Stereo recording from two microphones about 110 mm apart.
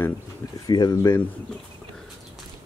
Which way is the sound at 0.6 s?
40° left (ahead or behind).